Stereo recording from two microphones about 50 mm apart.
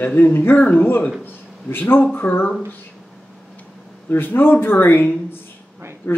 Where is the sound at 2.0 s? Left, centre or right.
Left.